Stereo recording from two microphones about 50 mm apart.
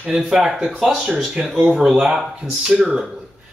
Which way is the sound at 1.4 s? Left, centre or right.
Centre.